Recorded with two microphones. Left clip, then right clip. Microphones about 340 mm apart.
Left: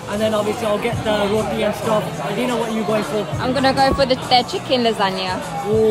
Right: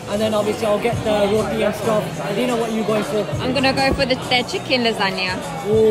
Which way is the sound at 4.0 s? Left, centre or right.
Centre.